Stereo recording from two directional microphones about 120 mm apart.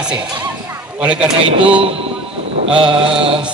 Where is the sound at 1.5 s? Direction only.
50° right (ahead or behind).